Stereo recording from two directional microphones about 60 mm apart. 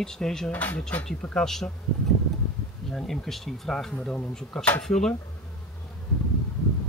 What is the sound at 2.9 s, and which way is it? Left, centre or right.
Speech, centre.